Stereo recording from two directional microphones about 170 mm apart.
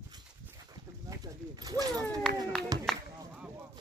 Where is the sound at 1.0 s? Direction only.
20° right (ahead or behind).